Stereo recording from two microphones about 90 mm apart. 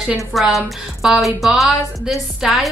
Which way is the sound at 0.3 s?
Centre (ahead or behind).